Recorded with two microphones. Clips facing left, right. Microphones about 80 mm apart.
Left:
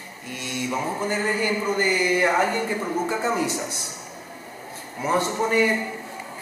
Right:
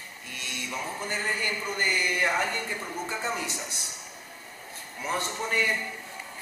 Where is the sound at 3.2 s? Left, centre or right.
Centre.